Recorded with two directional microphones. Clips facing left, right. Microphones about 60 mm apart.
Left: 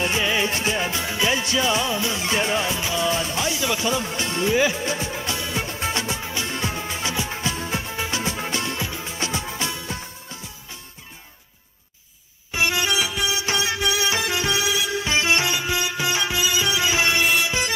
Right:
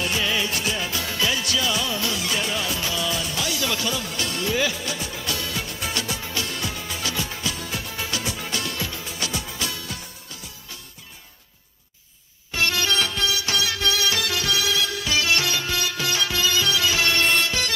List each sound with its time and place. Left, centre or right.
0.0 s music: left
12.5 s music: centre
17.2 s music: centre